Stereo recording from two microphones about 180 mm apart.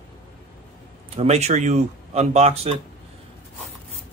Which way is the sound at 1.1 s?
35° right (ahead or behind).